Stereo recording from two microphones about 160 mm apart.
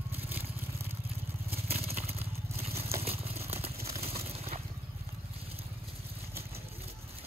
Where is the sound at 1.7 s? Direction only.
40° right (ahead or behind).